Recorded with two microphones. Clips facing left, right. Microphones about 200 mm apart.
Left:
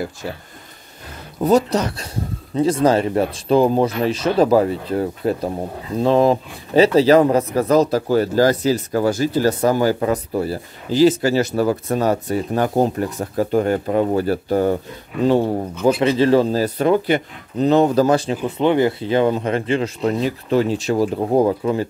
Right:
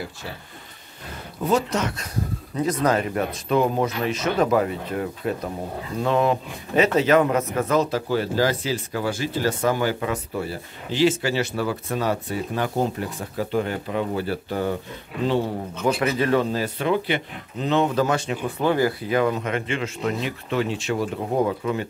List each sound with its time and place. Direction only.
1.4 s a man's voice: 35° left (ahead or behind)
15.8 s a man's voice: 30° left (ahead or behind)
18.6 s a man's voice: 20° left (ahead or behind)